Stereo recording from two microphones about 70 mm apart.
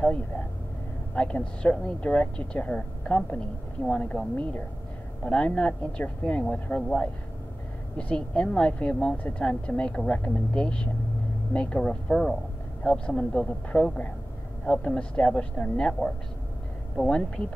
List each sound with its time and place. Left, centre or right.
1.1 s speech: centre